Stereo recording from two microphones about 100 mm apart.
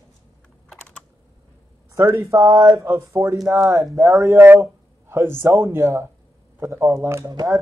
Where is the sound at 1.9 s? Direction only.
30° right (ahead or behind).